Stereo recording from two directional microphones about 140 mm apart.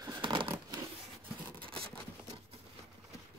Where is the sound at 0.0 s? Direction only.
30° right (ahead or behind).